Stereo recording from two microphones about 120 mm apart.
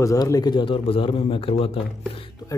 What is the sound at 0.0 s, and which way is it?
Speech, 25° left (ahead or behind).